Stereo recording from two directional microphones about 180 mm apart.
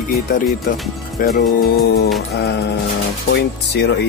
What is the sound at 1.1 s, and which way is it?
Music, 55° left (ahead or behind).